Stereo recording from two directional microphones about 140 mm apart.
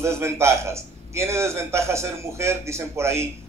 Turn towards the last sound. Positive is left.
turn(degrees=-20)  # may be behind; listen again after turning